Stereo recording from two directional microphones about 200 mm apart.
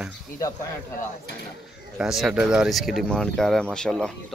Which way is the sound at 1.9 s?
Centre (ahead or behind).